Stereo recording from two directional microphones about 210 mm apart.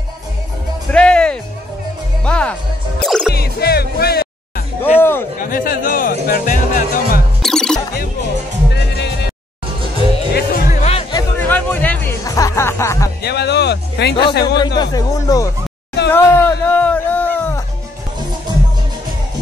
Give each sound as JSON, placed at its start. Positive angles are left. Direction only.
{"t": 0.9, "sound": "music", "side_deg": 5}
{"t": 3.3, "sound": "music", "side_deg": 50}
{"t": 4.8, "sound": "a sound", "side_deg": 10}
{"t": 5.4, "sound": "music", "side_deg": 45}
{"t": 7.4, "sound": "music", "side_deg": 5}
{"t": 8.7, "sound": "music", "side_deg": 55}
{"t": 10.3, "sound": "music", "side_deg": 45}
{"t": 10.8, "sound": "music", "side_deg": 30}
{"t": 11.3, "sound": "music", "side_deg": 10}
{"t": 13.2, "sound": "music", "side_deg": 50}
{"t": 14.2, "sound": "a man's voice", "side_deg": 50}
{"t": 14.8, "sound": "speech", "side_deg": 15}
{"t": 16.1, "sound": "music", "side_deg": 10}